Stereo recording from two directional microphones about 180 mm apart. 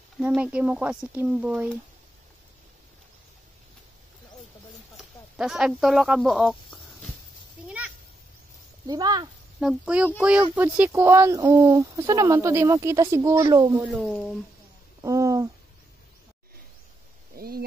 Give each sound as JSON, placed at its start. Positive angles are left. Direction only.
{"t": 0.2, "sound": "speech", "side_deg": -10}
{"t": 4.9, "sound": "a sound", "side_deg": 0}
{"t": 8.8, "sound": "speech", "side_deg": -20}
{"t": 9.6, "sound": "speech", "side_deg": -5}
{"t": 13.8, "sound": "speech", "side_deg": 0}
{"t": 15.0, "sound": "speech", "side_deg": -15}
{"t": 17.4, "sound": "speech", "side_deg": -55}